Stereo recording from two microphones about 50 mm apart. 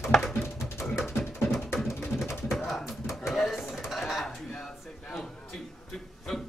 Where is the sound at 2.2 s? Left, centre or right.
Centre.